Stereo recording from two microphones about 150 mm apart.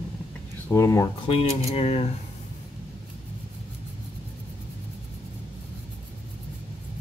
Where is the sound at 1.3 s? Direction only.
40° left (ahead or behind).